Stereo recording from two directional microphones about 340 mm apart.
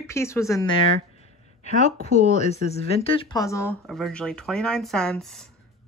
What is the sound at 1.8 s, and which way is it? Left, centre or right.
Speech, centre.